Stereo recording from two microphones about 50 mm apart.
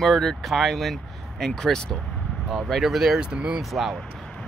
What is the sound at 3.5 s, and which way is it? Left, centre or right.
Speech, centre.